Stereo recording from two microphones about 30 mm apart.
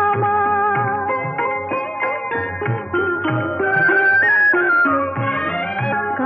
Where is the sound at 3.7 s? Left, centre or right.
Left.